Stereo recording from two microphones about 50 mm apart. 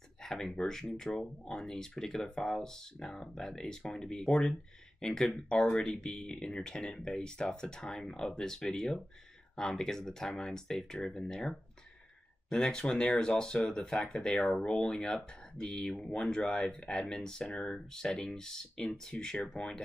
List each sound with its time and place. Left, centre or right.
0.2 s speech: centre